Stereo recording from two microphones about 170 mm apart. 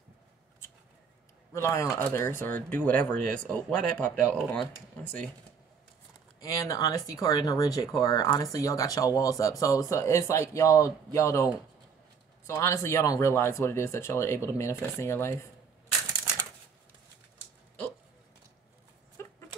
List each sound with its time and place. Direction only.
1.5 s speech: 15° left (ahead or behind)
6.4 s speech: 20° left (ahead or behind)